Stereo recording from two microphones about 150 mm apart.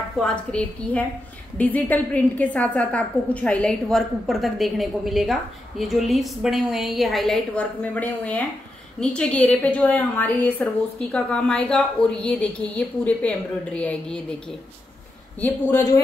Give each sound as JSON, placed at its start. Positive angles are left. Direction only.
{"t": 0.2, "sound": "a woman's voice", "side_deg": 5}
{"t": 15.4, "sound": "a man's voice", "side_deg": 20}